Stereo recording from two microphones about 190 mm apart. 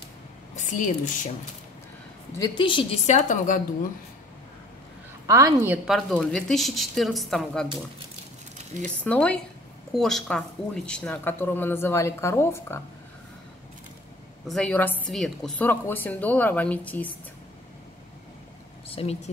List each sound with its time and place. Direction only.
0.6 s a woman's voice: 40° left (ahead or behind)
2.3 s a woman's voice: 25° left (ahead or behind); by 3.6 s 40° left (ahead or behind)
5.2 s a woman's voice: 15° right (ahead or behind)
5.9 s a woman's voice: centre (ahead or behind)
8.8 s speech: 10° left (ahead or behind)
14.5 s speech: 5° left (ahead or behind)
18.9 s speech: 30° left (ahead or behind)